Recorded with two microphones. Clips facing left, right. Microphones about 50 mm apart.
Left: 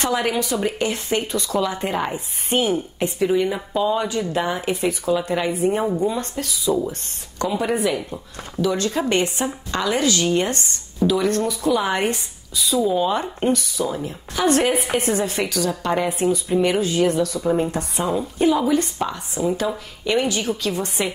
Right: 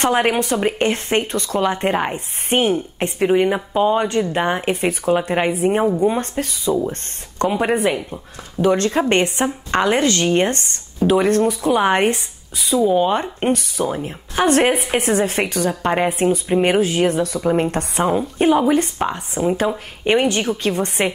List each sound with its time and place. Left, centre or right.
0.0 s speech: right